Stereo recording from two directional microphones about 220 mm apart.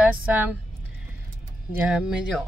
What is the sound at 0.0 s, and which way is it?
Speech, 5° right (ahead or behind).